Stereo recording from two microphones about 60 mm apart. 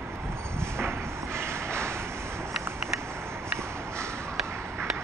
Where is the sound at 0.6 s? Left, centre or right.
Right.